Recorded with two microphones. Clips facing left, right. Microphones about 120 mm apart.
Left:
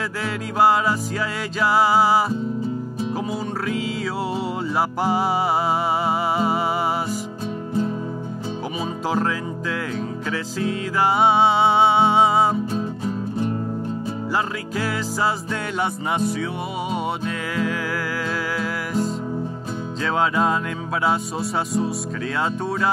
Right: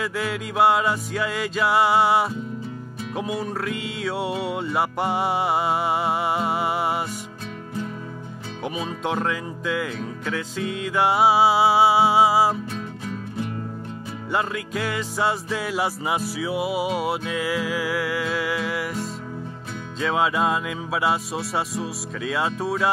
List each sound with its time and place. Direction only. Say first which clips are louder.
0.2 s music: left 2 dB; centre (ahead or behind)
8.7 s music: left 2 dB; 5° left (ahead or behind)
12.7 s music: left 6 dB; 35° left (ahead or behind)
14.3 s music: right 1 dB; centre (ahead or behind)